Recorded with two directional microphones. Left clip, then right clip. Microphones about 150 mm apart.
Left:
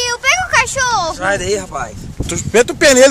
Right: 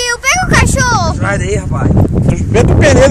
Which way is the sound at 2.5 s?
5° left (ahead or behind).